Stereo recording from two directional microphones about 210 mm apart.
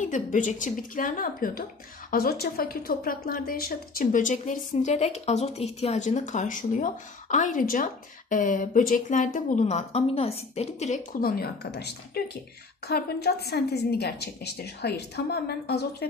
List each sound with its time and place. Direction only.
0.0 s a woman's voice: 35° left (ahead or behind)